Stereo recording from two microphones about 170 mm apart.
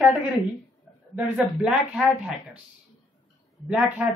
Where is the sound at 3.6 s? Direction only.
10° right (ahead or behind).